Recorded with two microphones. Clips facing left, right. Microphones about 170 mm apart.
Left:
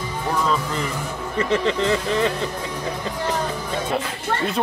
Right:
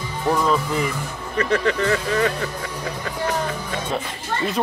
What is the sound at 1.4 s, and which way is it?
Speech, 25° left (ahead or behind).